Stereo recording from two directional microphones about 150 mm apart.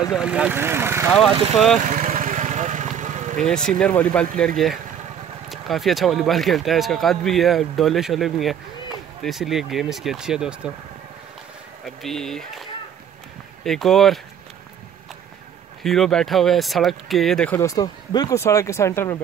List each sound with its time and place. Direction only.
0.1 s speech: 5° right (ahead or behind)
1.5 s speech: centre (ahead or behind)
1.9 s vehicle: 60° right (ahead or behind)
3.4 s speech: 5° left (ahead or behind)
5.5 s speech: centre (ahead or behind)
11.8 s speech: centre (ahead or behind)
13.7 s speech: centre (ahead or behind)
15.8 s speech: centre (ahead or behind)
17.6 s speech: 25° left (ahead or behind)